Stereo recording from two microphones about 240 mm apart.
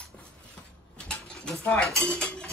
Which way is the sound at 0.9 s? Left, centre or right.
Centre.